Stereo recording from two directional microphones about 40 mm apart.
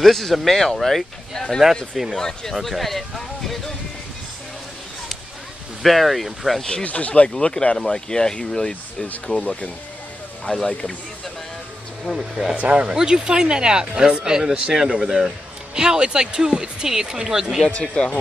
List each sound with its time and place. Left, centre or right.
0.0 s speech: centre
1.6 s speech: centre
2.1 s speech: centre
5.8 s speech: centre
6.8 s speech: left
7.2 s speech: left
9.0 s speech: left
10.4 s speech: centre
12.2 s speech: centre
12.5 s speech: right
12.9 s speech: centre
17.6 s speech: left